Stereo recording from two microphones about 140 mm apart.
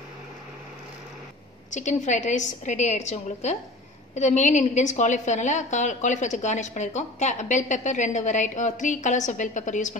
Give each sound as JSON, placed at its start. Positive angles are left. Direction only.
{"t": 1.7, "sound": "a woman's voice", "side_deg": 60}